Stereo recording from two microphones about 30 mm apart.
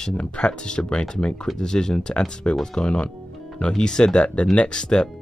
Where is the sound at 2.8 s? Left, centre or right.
Left.